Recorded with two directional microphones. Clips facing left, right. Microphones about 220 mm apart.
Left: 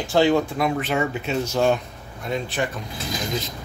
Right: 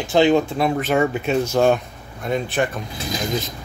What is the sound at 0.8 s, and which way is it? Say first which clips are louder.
Speech: right 5 dB; 50° right (ahead or behind).